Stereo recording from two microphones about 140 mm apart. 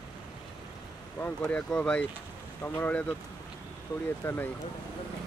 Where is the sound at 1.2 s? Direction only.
10° left (ahead or behind).